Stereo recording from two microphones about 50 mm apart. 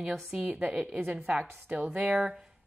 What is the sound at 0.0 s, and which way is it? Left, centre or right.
Speech, centre.